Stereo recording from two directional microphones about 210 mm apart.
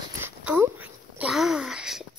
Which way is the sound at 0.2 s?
10° right (ahead or behind).